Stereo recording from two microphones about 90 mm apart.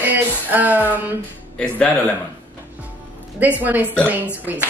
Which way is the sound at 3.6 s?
20° right (ahead or behind).